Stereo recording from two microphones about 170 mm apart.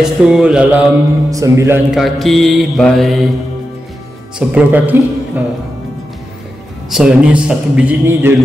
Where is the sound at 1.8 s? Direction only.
Centre (ahead or behind).